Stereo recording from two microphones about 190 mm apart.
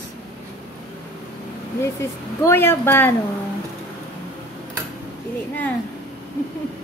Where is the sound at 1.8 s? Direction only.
15° left (ahead or behind).